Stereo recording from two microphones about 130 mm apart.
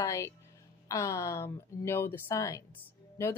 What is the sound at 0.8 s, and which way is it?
A woman's voice, 25° left (ahead or behind).